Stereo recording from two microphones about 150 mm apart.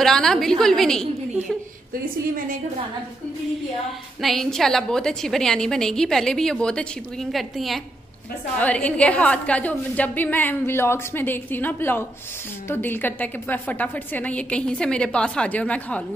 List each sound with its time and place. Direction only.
0.0 s a woman's voice: 5° left (ahead or behind)
2.3 s a woman's voice: 65° right (ahead or behind)
4.2 s a woman's voice: centre (ahead or behind)